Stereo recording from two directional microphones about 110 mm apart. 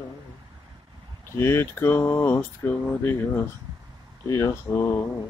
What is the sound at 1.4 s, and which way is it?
Speech, 20° left (ahead or behind).